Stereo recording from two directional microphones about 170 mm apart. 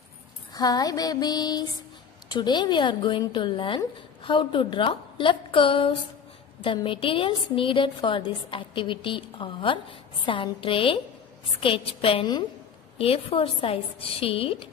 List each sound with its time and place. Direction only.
0.5 s a woman's voice: 20° left (ahead or behind)